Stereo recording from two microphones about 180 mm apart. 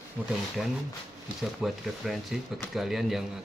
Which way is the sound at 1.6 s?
Centre (ahead or behind).